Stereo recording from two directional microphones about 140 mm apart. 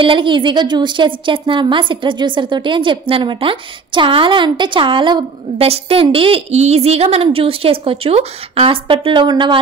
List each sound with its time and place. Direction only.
0.0 s a woman's voice: 35° right (ahead or behind)